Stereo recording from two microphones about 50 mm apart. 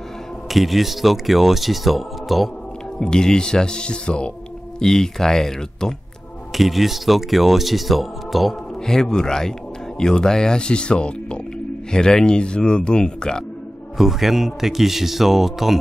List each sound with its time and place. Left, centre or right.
0.5 s speech: centre
3.0 s speech: centre
6.5 s speech: centre
8.8 s speech: centre
13.9 s speech: centre